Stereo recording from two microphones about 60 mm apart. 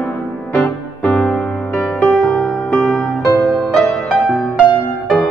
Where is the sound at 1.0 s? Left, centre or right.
Centre.